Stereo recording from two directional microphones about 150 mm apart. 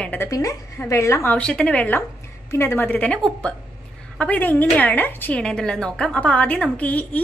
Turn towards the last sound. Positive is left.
turn(degrees=10)  # may be behind; listen again after turning